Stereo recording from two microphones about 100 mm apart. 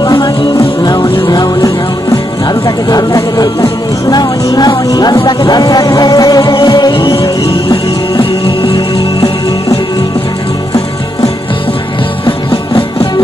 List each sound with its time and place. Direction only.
0.0 s music: 45° left (ahead or behind)
1.3 s music: 40° left (ahead or behind)
2.6 s speech: 40° left (ahead or behind)
3.6 s music: 45° left (ahead or behind)
12.3 s music: 60° left (ahead or behind)